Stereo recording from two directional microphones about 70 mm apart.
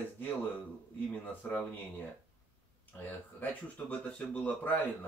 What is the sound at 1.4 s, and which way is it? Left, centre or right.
Speech, left.